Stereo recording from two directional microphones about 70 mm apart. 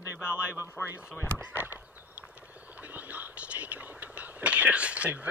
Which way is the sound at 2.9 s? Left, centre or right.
Right.